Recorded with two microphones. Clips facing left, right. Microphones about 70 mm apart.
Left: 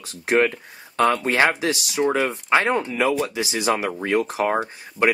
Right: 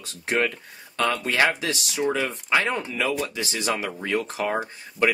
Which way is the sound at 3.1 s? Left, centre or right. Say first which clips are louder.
Left 4 dB; centre.